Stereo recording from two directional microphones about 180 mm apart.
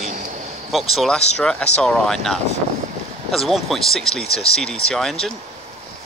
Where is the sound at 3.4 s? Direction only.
Centre (ahead or behind).